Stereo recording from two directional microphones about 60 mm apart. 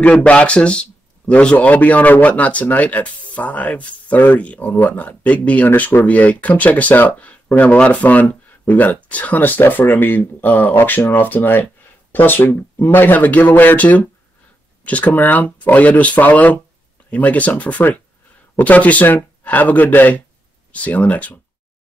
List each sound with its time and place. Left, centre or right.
0.0 s a man's voice: left